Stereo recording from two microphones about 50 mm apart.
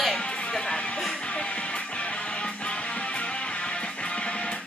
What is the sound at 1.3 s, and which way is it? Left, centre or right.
Music, centre.